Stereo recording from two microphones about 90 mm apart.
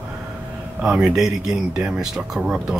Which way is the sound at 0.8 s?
5° right (ahead or behind).